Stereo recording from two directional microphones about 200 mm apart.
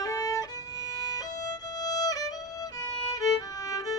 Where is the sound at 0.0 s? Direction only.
15° left (ahead or behind).